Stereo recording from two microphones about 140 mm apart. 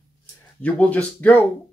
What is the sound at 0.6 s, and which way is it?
Speech, 10° left (ahead or behind).